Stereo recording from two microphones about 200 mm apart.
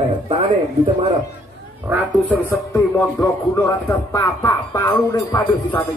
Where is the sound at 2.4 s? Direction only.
15° left (ahead or behind).